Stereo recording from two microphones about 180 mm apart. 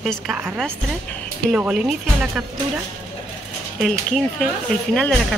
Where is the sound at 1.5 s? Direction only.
5° right (ahead or behind).